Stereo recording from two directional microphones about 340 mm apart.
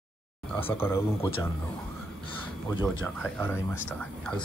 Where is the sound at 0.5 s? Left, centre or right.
Centre.